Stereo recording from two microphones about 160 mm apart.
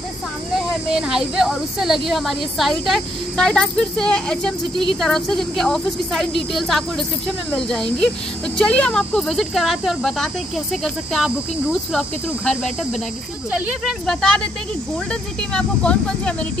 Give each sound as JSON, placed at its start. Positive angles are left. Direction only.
{"t": 0.9, "sound": "speech", "side_deg": -5}
{"t": 15.5, "sound": "speech", "side_deg": 5}